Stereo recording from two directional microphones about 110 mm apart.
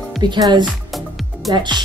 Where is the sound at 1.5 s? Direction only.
40° right (ahead or behind).